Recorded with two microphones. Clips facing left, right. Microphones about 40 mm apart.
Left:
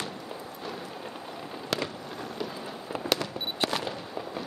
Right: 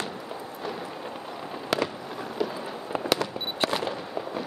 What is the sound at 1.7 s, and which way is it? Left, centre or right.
Fireworks, centre.